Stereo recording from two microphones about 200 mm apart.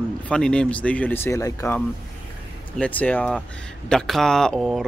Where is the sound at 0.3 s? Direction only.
5° left (ahead or behind).